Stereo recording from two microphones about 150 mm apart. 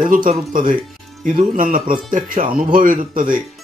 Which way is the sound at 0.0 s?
65° right (ahead or behind).